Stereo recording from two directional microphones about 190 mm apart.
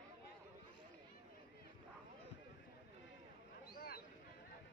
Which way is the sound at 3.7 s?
55° left (ahead or behind).